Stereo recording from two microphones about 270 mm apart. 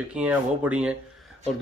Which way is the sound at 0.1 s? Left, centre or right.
Centre.